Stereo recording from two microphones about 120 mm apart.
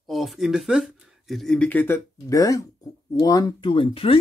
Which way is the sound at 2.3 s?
30° left (ahead or behind).